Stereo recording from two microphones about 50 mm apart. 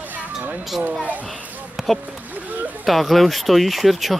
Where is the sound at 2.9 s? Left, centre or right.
Centre.